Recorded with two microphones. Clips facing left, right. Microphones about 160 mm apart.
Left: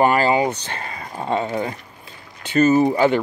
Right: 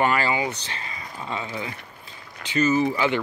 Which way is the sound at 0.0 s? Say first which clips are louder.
Left 6 dB; 40° left (ahead or behind).